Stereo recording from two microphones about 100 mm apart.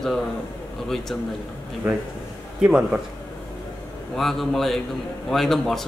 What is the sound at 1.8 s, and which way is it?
A man's voice, 15° right (ahead or behind).